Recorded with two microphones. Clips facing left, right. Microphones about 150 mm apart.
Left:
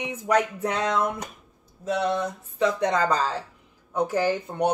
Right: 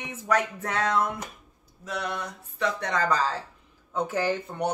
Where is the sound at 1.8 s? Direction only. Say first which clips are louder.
Left 8 dB; 30° left (ahead or behind).